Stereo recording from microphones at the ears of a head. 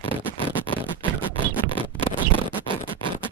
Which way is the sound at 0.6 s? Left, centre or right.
Right.